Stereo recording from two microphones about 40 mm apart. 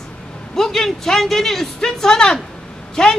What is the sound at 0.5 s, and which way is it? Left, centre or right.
A woman's voice, centre.